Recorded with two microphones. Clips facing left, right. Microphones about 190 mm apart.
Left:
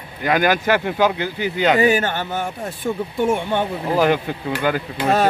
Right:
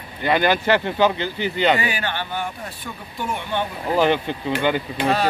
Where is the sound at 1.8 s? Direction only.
45° left (ahead or behind).